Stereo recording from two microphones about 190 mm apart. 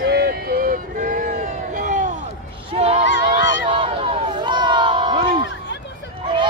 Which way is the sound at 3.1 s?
75° left (ahead or behind).